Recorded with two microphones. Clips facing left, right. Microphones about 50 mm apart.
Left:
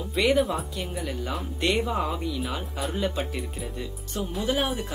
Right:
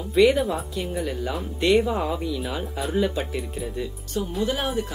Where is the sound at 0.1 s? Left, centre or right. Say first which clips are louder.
Right 4 dB; centre.